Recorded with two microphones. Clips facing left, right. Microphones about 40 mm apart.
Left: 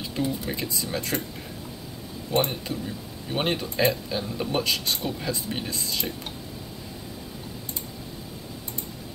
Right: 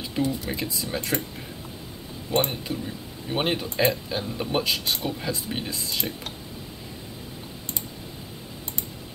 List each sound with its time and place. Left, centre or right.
0.1 s speech: centre
2.3 s speech: centre